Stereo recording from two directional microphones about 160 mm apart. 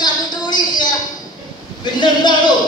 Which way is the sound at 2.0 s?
25° left (ahead or behind).